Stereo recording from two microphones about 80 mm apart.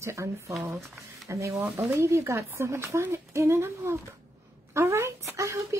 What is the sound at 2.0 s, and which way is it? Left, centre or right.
A woman's voice, right.